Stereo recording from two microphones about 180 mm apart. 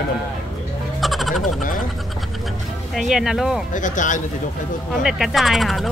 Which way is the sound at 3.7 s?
45° left (ahead or behind).